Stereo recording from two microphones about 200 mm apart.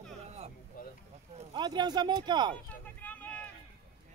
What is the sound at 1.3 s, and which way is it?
Speech, 25° right (ahead or behind).